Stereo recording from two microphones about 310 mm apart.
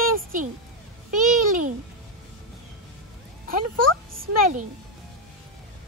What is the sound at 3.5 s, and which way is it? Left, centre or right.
Speech, right.